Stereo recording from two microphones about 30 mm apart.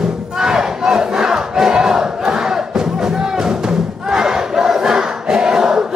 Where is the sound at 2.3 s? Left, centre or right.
Right.